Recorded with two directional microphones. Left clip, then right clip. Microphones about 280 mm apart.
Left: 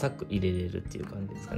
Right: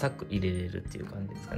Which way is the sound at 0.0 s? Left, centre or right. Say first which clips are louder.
Left 1 dB; centre.